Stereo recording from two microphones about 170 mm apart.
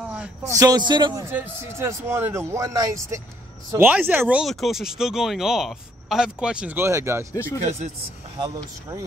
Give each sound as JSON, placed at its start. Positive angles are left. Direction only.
{"t": 0.5, "sound": "a man's voice", "side_deg": -20}
{"t": 1.2, "sound": "speech", "side_deg": -15}
{"t": 7.3, "sound": "speech", "side_deg": 15}
{"t": 8.4, "sound": "a man's voice", "side_deg": -20}